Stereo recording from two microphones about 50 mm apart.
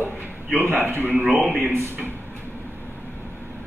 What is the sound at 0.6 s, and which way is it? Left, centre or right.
Speech, right.